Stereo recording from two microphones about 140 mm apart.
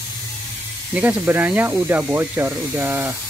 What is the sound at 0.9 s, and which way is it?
Speech, 15° right (ahead or behind).